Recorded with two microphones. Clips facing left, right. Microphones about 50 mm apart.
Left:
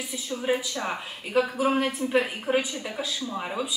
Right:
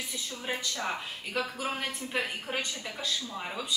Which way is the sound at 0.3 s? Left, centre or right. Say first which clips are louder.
Left 10 dB; centre.